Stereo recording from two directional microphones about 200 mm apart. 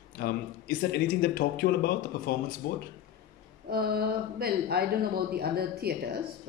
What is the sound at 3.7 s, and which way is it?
Speech, 50° right (ahead or behind).